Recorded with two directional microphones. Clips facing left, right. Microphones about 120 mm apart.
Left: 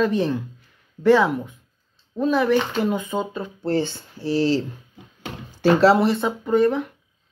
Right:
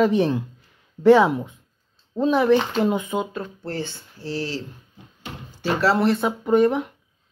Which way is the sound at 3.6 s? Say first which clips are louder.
Left 7 dB; 25° left (ahead or behind).